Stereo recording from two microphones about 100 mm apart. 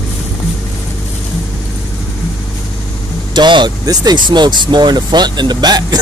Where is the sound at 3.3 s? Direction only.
50° right (ahead or behind).